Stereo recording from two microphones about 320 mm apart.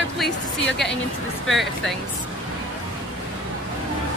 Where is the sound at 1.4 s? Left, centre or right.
Centre.